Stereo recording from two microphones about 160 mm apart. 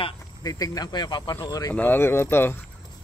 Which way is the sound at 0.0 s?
25° left (ahead or behind).